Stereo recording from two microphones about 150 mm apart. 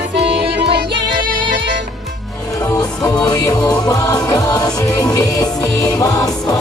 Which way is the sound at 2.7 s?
20° left (ahead or behind).